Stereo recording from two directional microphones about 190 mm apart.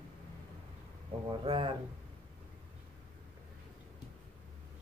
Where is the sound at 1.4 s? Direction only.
30° right (ahead or behind).